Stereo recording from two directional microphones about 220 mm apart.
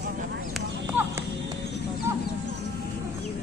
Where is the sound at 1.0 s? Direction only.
10° right (ahead or behind).